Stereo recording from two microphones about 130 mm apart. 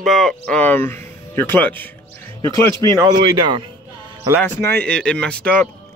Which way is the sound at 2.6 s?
35° right (ahead or behind).